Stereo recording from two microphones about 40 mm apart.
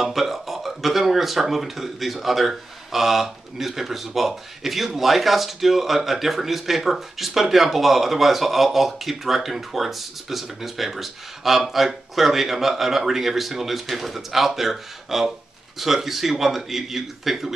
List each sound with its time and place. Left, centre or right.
0.0 s a man's voice: centre